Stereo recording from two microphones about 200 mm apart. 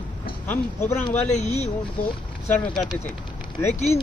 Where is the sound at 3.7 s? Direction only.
30° left (ahead or behind).